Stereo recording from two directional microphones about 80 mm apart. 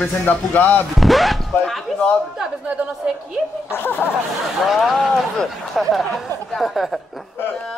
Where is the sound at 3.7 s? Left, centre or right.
Left.